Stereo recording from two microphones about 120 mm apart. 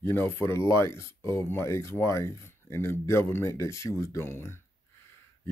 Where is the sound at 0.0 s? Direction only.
20° left (ahead or behind).